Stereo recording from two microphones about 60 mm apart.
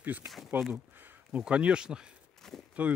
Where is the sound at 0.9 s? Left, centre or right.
Right.